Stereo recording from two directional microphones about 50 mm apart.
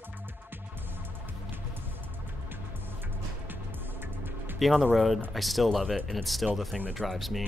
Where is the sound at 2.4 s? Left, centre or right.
Right.